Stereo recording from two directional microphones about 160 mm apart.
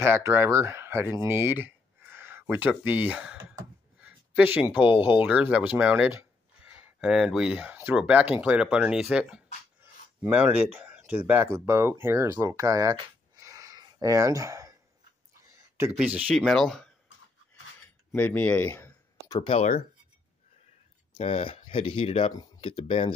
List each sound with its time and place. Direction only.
0.0 s speech: 15° right (ahead or behind)
4.0 s a sound: 10° right (ahead or behind)
5.0 s speech: 10° right (ahead or behind)
16.0 s speech: 5° right (ahead or behind)
18.1 s speech: 10° left (ahead or behind)
19.5 s speech: 45° left (ahead or behind)
21.1 s speech: 40° left (ahead or behind)